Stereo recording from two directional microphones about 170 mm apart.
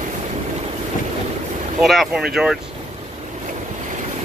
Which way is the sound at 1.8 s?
Centre (ahead or behind).